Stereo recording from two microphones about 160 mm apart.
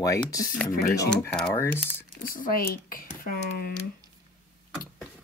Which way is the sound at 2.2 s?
60° left (ahead or behind).